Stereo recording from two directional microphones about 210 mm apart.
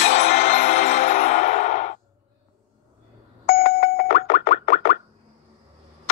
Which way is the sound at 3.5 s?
45° left (ahead or behind).